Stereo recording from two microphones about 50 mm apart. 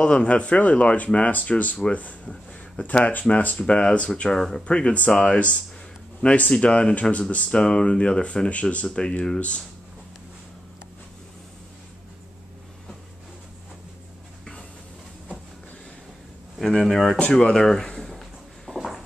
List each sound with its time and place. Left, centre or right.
0.0 s speech: left
4.3 s speech: centre
4.6 s speech: left
16.5 s speech: centre
17.3 s speech: centre
18.7 s a sound: centre